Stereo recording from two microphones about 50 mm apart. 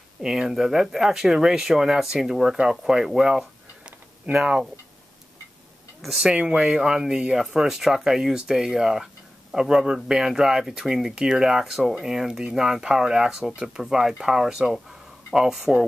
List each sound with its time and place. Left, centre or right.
0.2 s speech: centre
6.0 s speech: centre